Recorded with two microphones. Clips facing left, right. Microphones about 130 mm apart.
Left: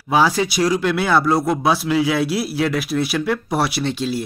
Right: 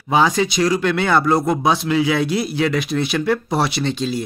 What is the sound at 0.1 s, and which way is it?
Speech, 5° left (ahead or behind).